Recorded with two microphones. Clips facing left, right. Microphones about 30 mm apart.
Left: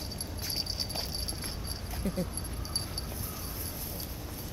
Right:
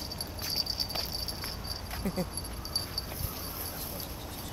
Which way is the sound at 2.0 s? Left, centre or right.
Right.